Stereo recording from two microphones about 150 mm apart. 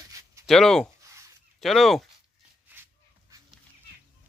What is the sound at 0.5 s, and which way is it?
Speech, 5° left (ahead or behind).